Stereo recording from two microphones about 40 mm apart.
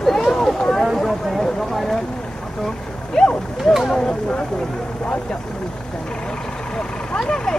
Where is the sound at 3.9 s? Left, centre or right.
Left.